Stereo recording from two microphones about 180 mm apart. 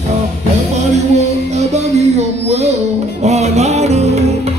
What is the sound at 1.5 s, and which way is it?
Music, 40° right (ahead or behind).